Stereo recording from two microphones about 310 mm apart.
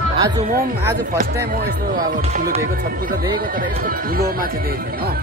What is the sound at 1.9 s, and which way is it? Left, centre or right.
Speech, right.